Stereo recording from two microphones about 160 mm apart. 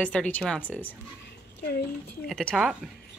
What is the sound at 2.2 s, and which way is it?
Speech, 5° left (ahead or behind).